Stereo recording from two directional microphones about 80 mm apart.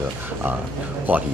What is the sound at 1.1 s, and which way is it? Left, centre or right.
Speech, right.